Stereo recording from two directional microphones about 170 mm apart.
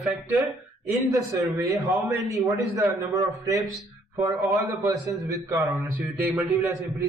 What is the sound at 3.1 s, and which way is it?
A man's voice, 20° right (ahead or behind).